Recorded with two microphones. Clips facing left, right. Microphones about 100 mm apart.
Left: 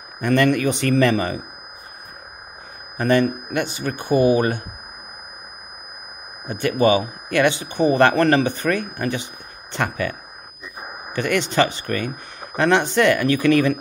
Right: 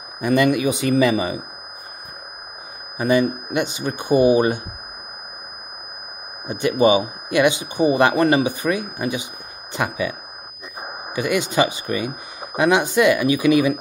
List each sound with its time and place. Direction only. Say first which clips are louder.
0.2 s speech: even; 10° right (ahead or behind)
3.0 s speech: even; 10° right (ahead or behind)
6.4 s speech: right 1 dB; 20° right (ahead or behind)
11.1 s speech: even; 10° right (ahead or behind)